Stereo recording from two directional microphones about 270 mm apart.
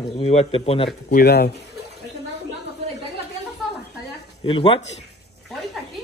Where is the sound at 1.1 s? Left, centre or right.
Left.